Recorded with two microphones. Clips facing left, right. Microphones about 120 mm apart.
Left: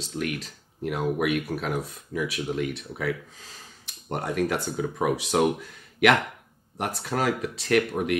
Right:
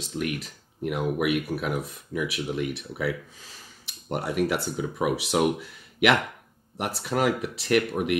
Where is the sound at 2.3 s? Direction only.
40° left (ahead or behind).